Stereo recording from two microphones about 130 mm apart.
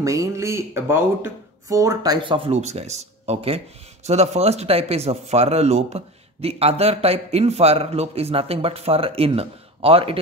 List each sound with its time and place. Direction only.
0.0 s speech: 25° right (ahead or behind)
2.1 s speech: 40° right (ahead or behind)